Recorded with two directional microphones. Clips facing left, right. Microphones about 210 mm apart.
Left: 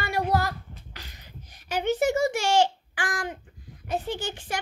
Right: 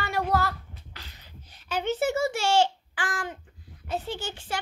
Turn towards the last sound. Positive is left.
turn(degrees=15)  # may be behind; listen again after turning